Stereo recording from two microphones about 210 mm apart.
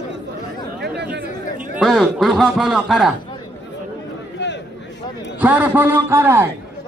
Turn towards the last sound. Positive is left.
turn(degrees=-10)  # may be behind; listen again after turning